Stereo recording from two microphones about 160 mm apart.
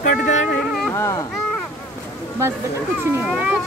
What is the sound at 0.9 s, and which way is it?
Speech, 15° left (ahead or behind).